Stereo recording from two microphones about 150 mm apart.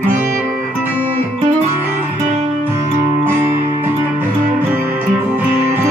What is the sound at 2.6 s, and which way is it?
Music, 15° right (ahead or behind).